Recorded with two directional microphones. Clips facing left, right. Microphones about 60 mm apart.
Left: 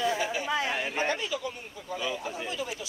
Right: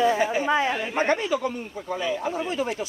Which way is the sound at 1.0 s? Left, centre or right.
Right.